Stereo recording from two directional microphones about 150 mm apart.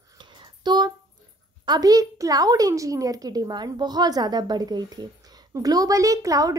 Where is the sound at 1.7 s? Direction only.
25° right (ahead or behind).